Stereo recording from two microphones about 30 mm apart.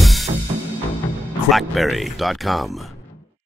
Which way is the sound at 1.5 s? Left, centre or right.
Centre.